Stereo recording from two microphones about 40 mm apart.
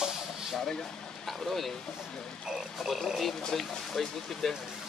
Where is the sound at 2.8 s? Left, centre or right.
Centre.